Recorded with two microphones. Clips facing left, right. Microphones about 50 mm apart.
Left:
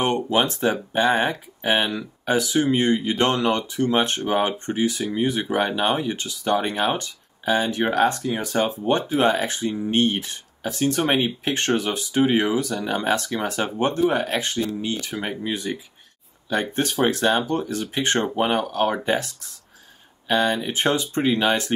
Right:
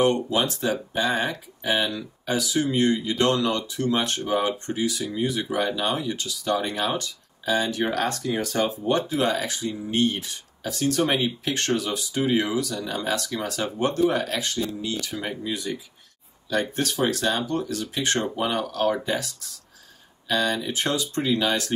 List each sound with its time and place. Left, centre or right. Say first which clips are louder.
0.0 s speech: left 1 dB; left